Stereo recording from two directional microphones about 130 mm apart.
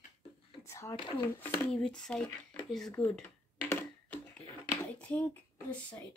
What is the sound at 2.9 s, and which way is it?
Speech, 15° left (ahead or behind).